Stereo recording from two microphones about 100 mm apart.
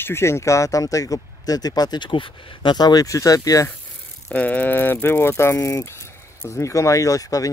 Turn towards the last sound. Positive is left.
turn(degrees=35)  # may be behind; listen again after turning